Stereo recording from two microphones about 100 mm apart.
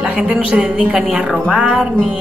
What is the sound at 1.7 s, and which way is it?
Speech, 5° left (ahead or behind).